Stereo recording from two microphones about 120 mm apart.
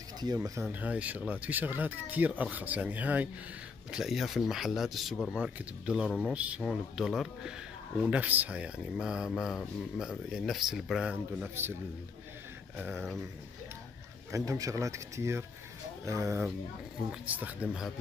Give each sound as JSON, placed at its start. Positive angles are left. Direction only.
{"t": 0.2, "sound": "speech", "side_deg": -35}
{"t": 0.7, "sound": "speech", "side_deg": -15}
{"t": 8.1, "sound": "speech", "side_deg": -15}
{"t": 12.7, "sound": "speech", "side_deg": -15}
{"t": 14.3, "sound": "speech", "side_deg": -25}
{"t": 17.1, "sound": "speech", "side_deg": -15}